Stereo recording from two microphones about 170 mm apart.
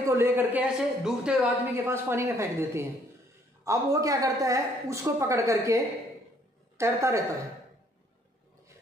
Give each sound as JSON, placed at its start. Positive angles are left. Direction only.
{"t": 0.1, "sound": "a woman's voice", "side_deg": -15}